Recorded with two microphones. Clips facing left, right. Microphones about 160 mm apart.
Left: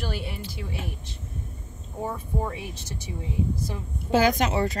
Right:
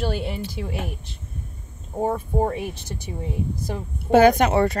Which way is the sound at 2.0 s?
50° right (ahead or behind).